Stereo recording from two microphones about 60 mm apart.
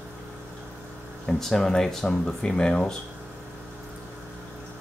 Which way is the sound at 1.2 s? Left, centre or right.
Centre.